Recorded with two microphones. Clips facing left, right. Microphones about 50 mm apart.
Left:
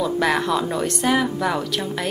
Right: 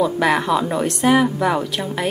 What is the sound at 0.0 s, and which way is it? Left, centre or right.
A woman's voice, centre.